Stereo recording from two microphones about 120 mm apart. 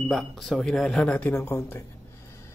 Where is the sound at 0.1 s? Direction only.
5° left (ahead or behind); by 1.9 s 20° left (ahead or behind).